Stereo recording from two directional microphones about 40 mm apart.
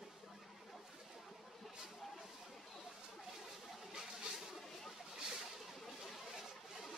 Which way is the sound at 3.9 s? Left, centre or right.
Centre.